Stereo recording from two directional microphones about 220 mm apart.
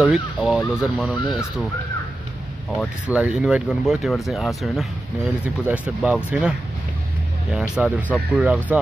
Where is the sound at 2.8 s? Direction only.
5° right (ahead or behind).